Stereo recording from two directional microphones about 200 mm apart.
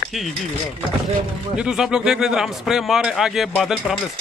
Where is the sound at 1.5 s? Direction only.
5° right (ahead or behind).